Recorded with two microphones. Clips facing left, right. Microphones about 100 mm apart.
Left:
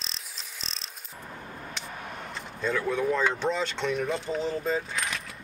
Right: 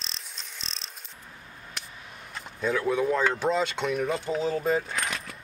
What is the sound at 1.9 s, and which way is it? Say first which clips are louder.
Vehicle: left 7 dB; 60° left (ahead or behind).